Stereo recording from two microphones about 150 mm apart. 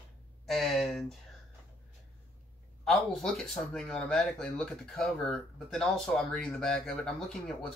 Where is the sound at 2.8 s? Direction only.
Centre (ahead or behind).